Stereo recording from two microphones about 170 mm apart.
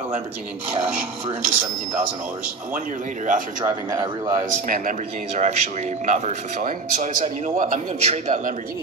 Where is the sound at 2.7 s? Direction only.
50° right (ahead or behind).